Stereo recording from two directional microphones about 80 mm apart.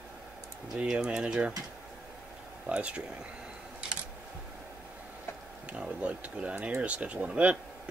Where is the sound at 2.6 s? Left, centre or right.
Centre.